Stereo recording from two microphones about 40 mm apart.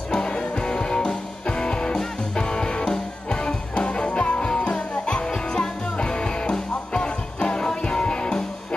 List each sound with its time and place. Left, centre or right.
0.1 s music: left